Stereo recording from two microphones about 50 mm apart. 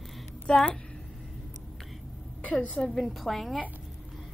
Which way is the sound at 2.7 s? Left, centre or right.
Centre.